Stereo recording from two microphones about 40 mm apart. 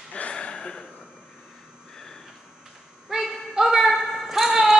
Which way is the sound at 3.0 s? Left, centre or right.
Centre.